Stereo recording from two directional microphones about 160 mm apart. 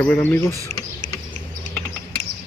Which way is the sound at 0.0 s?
10° left (ahead or behind).